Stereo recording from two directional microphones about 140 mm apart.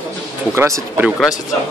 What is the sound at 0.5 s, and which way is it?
Speech, 20° right (ahead or behind).